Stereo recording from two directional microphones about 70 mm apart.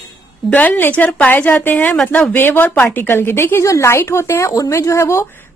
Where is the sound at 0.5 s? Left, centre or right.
Left.